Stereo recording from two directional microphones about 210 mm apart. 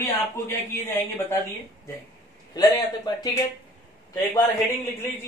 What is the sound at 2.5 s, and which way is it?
Speech, 20° left (ahead or behind).